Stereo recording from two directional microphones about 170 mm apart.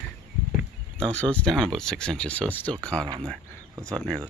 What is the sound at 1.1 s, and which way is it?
Speech, 5° left (ahead or behind).